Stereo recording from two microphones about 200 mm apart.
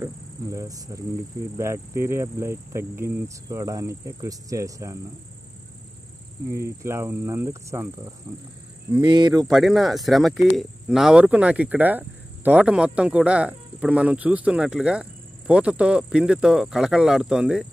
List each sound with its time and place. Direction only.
0.0 s insect: 15° right (ahead or behind)
1.6 s speech: 15° right (ahead or behind)
6.5 s speech: 15° right (ahead or behind)
9.5 s speech: centre (ahead or behind)